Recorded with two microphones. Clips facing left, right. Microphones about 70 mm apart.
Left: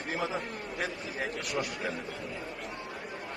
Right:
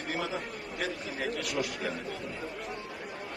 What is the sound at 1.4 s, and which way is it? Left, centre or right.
Speech, left.